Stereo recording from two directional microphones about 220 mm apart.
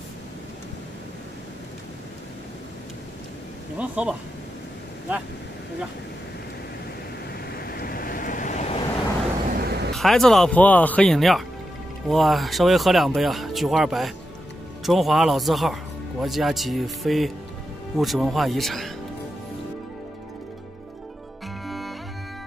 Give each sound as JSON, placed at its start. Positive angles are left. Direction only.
{"t": 3.7, "sound": "speech", "side_deg": -5}
{"t": 7.5, "sound": "waves", "side_deg": 45}
{"t": 9.5, "sound": "a sound", "side_deg": -45}
{"t": 9.9, "sound": "speech", "side_deg": 0}
{"t": 21.6, "sound": "music", "side_deg": 0}